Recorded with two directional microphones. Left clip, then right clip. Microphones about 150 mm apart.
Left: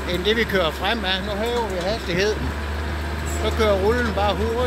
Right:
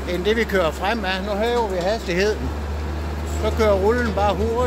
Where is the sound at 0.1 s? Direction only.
10° right (ahead or behind).